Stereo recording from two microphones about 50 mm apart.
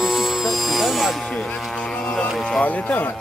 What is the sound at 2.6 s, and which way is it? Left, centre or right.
Speech, left.